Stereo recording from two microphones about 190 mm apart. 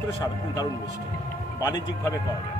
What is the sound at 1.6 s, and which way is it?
Speech, 20° left (ahead or behind).